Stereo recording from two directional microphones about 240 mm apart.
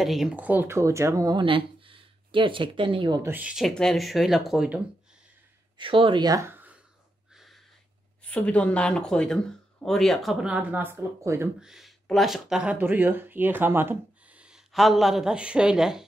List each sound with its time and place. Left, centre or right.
0.0 s speech: centre
5.8 s speech: right
7.3 s a sound: centre
8.2 s speech: centre